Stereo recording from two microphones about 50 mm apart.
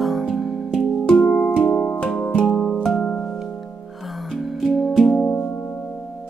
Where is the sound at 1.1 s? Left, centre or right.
Left.